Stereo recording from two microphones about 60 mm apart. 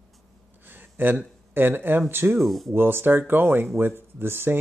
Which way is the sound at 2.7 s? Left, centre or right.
Right.